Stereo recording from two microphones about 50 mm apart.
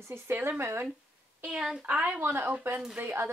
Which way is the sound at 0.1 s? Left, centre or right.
Right.